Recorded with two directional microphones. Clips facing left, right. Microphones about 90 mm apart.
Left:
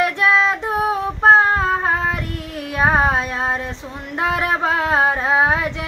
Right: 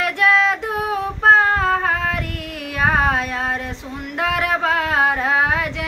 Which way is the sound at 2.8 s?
25° left (ahead or behind).